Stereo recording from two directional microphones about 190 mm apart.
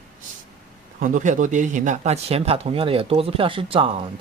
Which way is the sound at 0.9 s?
45° right (ahead or behind).